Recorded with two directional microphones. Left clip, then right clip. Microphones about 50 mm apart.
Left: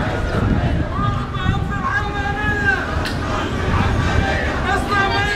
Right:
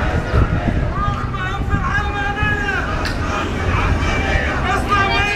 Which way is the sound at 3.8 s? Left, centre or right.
Centre.